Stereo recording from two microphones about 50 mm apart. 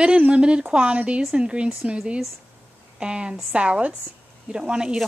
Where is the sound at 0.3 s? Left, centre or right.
Centre.